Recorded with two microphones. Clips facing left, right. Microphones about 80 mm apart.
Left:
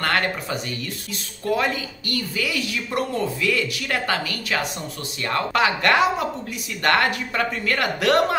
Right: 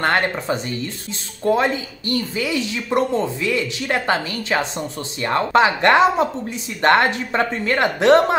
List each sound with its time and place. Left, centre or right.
0.0 s a woman's voice: right